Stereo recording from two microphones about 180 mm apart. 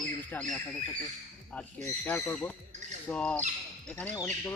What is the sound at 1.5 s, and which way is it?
Speech, 5° left (ahead or behind).